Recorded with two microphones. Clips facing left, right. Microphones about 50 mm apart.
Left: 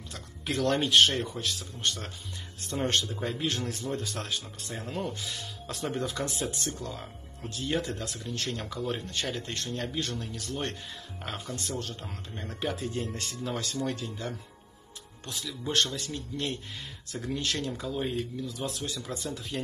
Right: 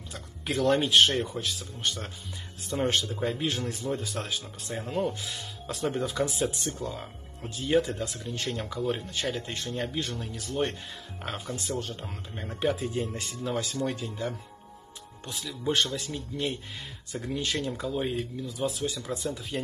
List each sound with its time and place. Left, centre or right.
0.1 s a man's voice: centre